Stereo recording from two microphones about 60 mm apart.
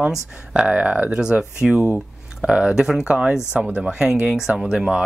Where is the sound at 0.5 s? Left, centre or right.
Centre.